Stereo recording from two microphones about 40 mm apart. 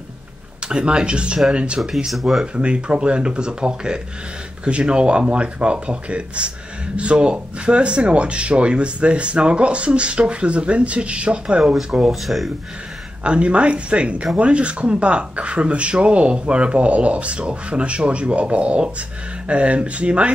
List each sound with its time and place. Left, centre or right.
0.6 s speech: right
2.0 s speech: centre
2.4 s speech: right
12.1 s speech: centre
13.2 s speech: right